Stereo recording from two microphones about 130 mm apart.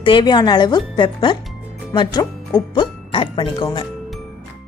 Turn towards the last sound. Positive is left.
turn(degrees=35)  # may be behind; listen again after turning